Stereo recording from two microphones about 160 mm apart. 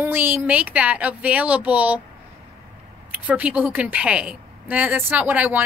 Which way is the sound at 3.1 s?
10° right (ahead or behind).